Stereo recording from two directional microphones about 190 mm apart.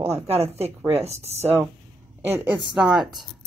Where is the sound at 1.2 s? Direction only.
35° right (ahead or behind).